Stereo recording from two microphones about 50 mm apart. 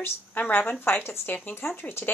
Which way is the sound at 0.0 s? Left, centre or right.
Left.